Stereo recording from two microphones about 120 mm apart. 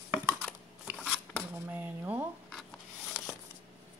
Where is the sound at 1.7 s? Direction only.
15° right (ahead or behind).